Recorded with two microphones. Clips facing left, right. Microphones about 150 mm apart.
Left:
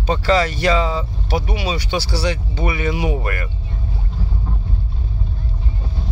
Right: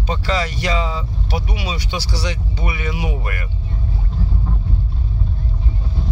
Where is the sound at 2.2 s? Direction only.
50° left (ahead or behind).